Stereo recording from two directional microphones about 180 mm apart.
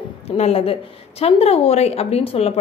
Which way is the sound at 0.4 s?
35° left (ahead or behind).